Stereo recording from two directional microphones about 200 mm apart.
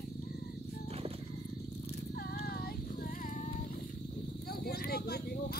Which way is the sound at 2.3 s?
50° left (ahead or behind).